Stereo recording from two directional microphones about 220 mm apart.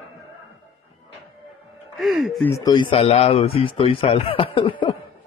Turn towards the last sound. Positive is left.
turn(degrees=25)  # may be behind; listen again after turning